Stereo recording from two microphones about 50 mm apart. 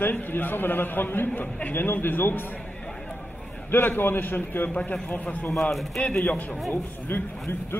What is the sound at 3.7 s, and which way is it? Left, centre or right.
A man's voice, left.